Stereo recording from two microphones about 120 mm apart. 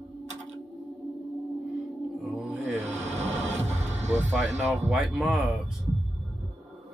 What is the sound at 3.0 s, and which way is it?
Music, 65° right (ahead or behind).